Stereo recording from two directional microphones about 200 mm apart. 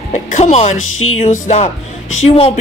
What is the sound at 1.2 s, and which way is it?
A woman's voice, 35° left (ahead or behind).